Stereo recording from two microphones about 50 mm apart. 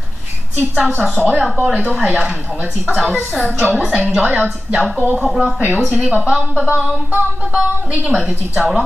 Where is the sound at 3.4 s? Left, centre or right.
Right.